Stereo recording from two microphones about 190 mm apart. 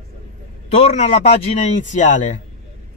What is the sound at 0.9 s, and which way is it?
Speech, 35° left (ahead or behind).